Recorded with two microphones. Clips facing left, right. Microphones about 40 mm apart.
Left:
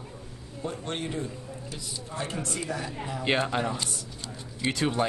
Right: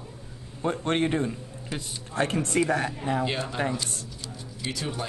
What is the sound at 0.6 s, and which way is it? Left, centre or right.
Speech, right.